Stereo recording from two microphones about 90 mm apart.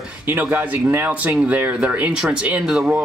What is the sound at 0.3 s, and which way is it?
Speech, 20° right (ahead or behind).